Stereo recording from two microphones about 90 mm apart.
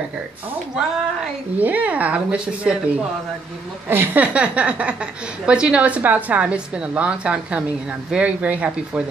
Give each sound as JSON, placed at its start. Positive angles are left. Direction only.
{"t": 1.6, "sound": "a woman's voice", "side_deg": -20}
{"t": 3.9, "sound": "a woman's voice", "side_deg": -25}